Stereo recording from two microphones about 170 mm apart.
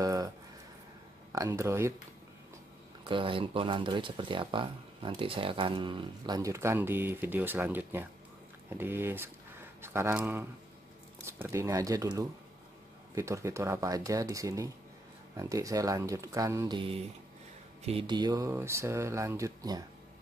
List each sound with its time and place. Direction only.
0.0 s a sound: 20° right (ahead or behind)
1.3 s speech: 20° right (ahead or behind)
3.1 s speech: 30° right (ahead or behind)
16.7 s speech: 30° right (ahead or behind)